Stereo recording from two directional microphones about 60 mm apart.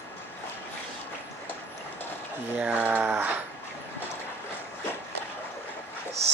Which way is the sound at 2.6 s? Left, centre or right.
Right.